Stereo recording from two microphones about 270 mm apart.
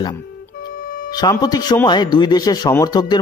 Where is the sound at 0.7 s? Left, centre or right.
Left.